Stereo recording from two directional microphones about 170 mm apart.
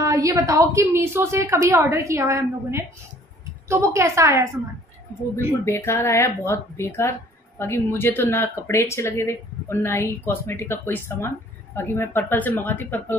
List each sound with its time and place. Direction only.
0.0 s a woman's voice: 20° right (ahead or behind)
5.3 s speech: 15° left (ahead or behind)